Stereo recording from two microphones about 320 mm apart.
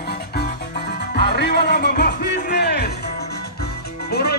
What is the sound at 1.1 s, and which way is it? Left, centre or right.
Music, left.